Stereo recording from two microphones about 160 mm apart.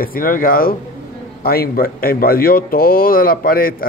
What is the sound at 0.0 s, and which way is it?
Speech, 60° left (ahead or behind).